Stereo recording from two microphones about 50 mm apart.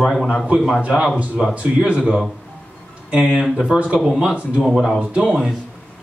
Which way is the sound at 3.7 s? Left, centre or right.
Right.